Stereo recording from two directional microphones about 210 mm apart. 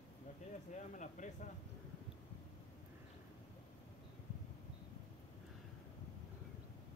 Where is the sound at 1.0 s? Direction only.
35° left (ahead or behind).